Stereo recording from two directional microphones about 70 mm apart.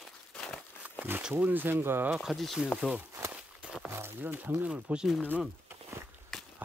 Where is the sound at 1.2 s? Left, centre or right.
Centre.